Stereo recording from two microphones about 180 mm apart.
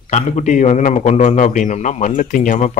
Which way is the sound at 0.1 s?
40° left (ahead or behind).